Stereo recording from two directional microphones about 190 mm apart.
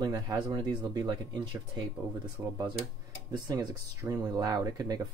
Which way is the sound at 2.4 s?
20° right (ahead or behind).